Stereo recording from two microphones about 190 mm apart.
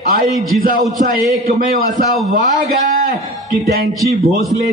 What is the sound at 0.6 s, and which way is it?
A man's voice, 50° right (ahead or behind).